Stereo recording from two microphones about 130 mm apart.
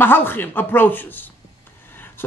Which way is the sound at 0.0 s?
15° left (ahead or behind).